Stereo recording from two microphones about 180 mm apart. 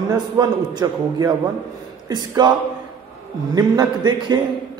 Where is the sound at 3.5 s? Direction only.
20° right (ahead or behind).